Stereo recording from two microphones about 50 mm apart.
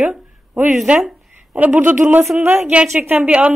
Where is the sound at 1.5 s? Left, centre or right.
Right.